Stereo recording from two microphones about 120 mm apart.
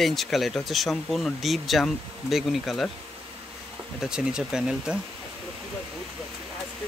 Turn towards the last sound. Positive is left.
turn(degrees=-5)  # may be behind; listen again after turning